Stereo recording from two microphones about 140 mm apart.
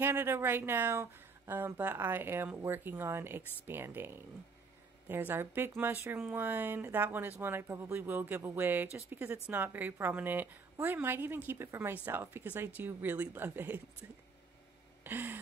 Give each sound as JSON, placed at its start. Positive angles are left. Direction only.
{"t": 0.0, "sound": "speech", "side_deg": -15}
{"t": 15.0, "sound": "speech", "side_deg": -15}